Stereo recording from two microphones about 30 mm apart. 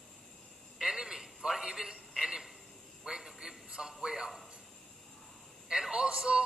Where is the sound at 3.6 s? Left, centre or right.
Right.